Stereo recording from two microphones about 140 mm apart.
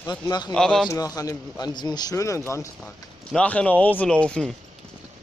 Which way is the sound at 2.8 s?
5° left (ahead or behind).